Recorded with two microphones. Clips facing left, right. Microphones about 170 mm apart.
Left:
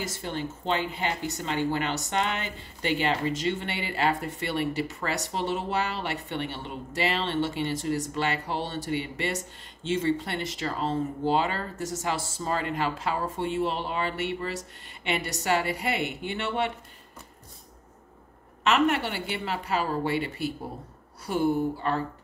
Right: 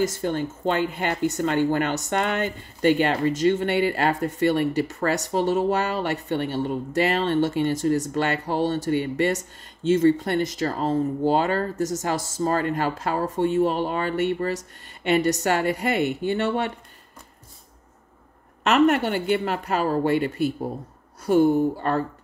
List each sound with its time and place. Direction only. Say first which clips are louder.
0.0 s speech: right 8 dB; 45° right (ahead or behind)
18.6 s speech: right 5 dB; 45° right (ahead or behind)
21.8 s speech: right 4 dB; 45° right (ahead or behind)